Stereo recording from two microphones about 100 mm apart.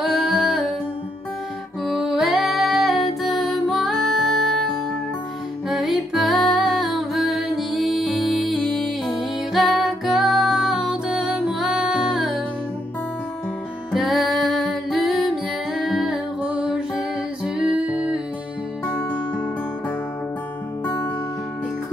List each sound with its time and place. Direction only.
0.1 s singing: centre (ahead or behind)
1.9 s music: 5° right (ahead or behind)
5.7 s music: 5° right (ahead or behind)
13.9 s music: centre (ahead or behind)
20.8 s music: 15° left (ahead or behind)